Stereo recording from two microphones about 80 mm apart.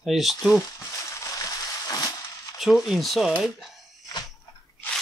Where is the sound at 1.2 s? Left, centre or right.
Left.